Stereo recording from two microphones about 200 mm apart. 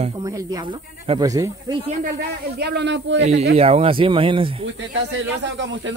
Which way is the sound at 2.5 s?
55° right (ahead or behind).